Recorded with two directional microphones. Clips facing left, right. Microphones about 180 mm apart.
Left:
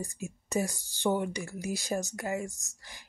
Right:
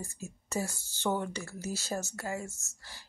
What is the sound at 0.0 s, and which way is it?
Speech, 15° left (ahead or behind).